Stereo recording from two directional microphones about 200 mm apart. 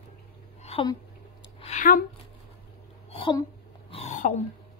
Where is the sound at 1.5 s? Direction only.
35° left (ahead or behind).